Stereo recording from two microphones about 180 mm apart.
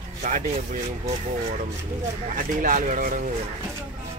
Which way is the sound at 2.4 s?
50° right (ahead or behind).